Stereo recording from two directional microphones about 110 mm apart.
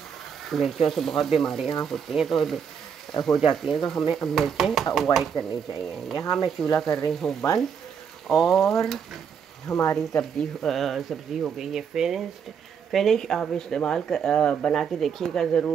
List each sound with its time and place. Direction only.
0.5 s speech: centre (ahead or behind)
9.7 s speech: 30° left (ahead or behind)
9.9 s speech: 5° left (ahead or behind)